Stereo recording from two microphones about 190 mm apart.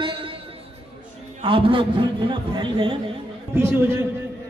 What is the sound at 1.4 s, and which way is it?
A man's voice, 25° right (ahead or behind).